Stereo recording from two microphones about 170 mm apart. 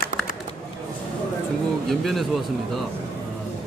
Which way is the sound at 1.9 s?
Centre (ahead or behind).